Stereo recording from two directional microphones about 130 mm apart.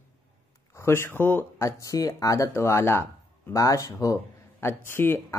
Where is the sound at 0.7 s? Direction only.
20° left (ahead or behind).